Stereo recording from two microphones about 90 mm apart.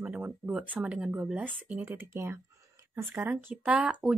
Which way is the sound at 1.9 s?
30° right (ahead or behind).